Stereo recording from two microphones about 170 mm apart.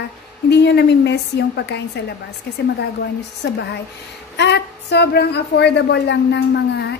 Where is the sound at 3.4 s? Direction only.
90° left.